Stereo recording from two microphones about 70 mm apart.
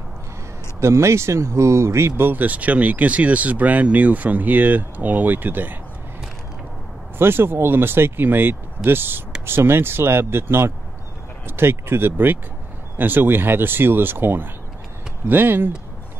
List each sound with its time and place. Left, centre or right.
0.7 s speech: right
7.2 s speech: right